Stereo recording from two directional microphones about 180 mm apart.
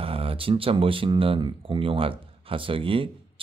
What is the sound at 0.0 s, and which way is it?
Speech, 30° right (ahead or behind).